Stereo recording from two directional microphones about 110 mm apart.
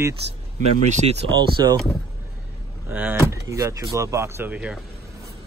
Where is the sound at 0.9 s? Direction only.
90° right.